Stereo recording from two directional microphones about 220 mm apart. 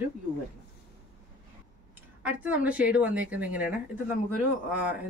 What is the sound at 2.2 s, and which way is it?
Speech, 5° right (ahead or behind).